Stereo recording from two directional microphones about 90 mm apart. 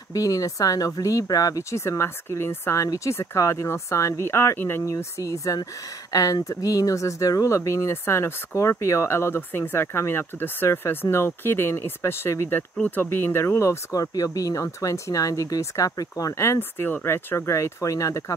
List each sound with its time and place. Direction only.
0.1 s speech: 40° left (ahead or behind)
12.7 s speech: 15° left (ahead or behind); by 18.2 s 35° left (ahead or behind)